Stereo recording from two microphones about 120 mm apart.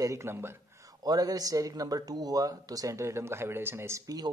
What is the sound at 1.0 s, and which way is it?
Speech, 30° right (ahead or behind).